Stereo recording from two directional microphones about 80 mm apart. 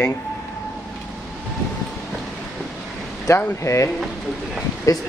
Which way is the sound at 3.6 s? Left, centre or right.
Left.